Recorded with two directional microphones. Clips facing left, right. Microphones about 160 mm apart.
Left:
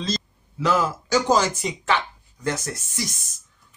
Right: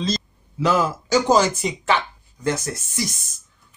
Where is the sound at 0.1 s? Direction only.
15° right (ahead or behind).